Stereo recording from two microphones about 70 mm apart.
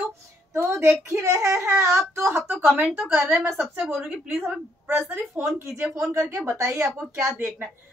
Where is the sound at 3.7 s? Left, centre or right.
Centre.